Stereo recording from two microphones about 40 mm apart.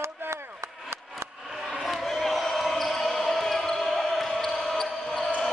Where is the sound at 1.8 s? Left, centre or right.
Centre.